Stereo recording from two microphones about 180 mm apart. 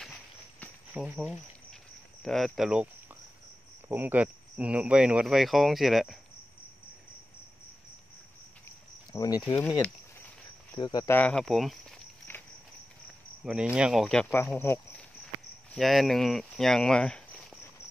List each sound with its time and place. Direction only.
0.9 s speech: 5° right (ahead or behind)
1.2 s cricket: centre (ahead or behind)
2.2 s speech: centre (ahead or behind)
3.9 s speech: 10° right (ahead or behind)
8.6 s cricket: 20° left (ahead or behind)
9.5 s speech: 15° left (ahead or behind)
11.1 s speech: 5° left (ahead or behind)
12.3 s insect: 10° left (ahead or behind)
13.4 s speech: 5° right (ahead or behind)
14.0 s speech: 10° left (ahead or behind)